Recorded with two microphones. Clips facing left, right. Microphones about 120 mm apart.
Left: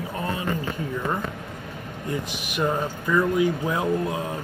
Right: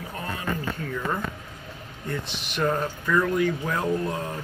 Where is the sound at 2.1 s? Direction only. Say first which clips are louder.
Left 2 dB; 10° left (ahead or behind).